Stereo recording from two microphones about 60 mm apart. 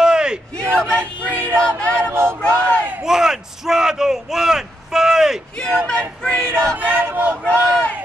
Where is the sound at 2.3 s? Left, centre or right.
Centre.